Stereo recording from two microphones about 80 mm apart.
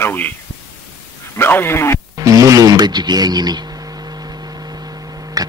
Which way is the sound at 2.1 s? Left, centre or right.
Right.